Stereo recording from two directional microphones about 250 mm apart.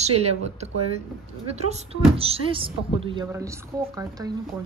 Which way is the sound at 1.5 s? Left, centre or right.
Right.